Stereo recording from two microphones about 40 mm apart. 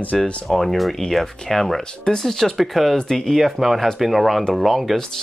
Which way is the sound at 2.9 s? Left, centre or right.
Centre.